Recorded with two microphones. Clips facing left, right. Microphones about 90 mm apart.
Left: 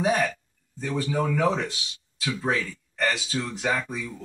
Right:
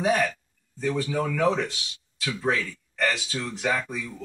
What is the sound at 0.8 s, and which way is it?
Speech, 20° left (ahead or behind).